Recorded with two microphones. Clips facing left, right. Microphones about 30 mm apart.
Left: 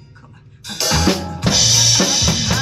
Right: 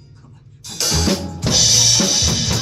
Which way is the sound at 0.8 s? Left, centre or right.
Centre.